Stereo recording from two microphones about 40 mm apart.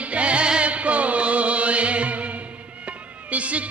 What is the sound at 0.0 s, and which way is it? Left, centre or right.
Music, right.